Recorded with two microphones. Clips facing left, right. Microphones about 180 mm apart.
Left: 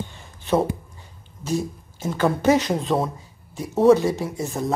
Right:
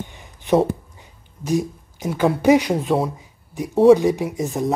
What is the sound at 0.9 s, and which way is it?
Speech, 15° right (ahead or behind).